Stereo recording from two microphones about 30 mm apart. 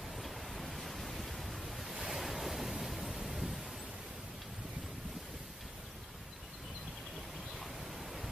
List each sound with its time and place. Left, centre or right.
0.1 s pink noise: centre
2.0 s waves: centre
7.5 s pink noise: centre